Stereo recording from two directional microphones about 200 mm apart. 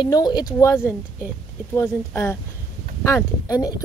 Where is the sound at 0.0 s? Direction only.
20° left (ahead or behind).